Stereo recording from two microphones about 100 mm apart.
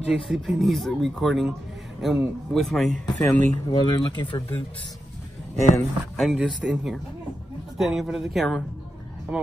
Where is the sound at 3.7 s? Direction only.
50° left (ahead or behind).